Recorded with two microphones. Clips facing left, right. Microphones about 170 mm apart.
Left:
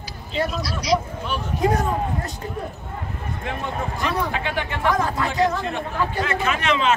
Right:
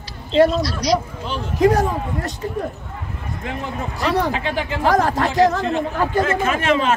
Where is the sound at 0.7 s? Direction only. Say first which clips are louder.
Right 3 dB; 5° left (ahead or behind).